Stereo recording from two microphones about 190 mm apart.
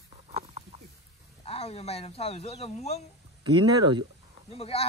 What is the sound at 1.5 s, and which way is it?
Speech, 35° left (ahead or behind).